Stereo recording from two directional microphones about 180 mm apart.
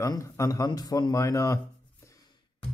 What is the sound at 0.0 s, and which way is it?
Speech, 15° left (ahead or behind).